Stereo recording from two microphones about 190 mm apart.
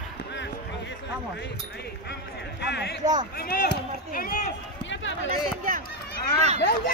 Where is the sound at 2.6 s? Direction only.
60° left (ahead or behind).